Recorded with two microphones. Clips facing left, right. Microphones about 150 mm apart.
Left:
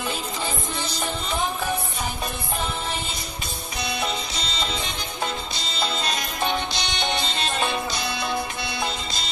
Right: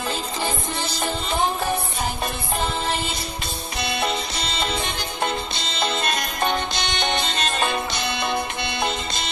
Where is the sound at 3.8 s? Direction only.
65° right (ahead or behind).